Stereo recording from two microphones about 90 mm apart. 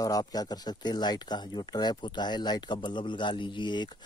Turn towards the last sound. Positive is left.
turn(degrees=55)  # may be behind; listen again after turning